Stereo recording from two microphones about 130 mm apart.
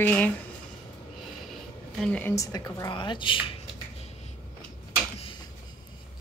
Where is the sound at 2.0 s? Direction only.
10° left (ahead or behind).